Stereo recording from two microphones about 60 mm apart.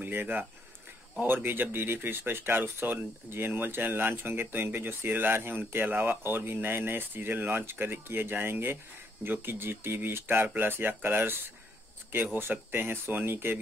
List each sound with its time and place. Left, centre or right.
0.0 s speech: right
12.4 s speech: right